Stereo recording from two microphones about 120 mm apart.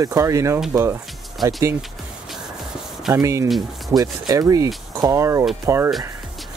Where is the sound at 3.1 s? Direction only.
25° right (ahead or behind).